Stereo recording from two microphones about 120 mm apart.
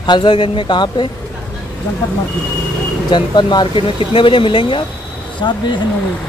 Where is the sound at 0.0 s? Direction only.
40° left (ahead or behind).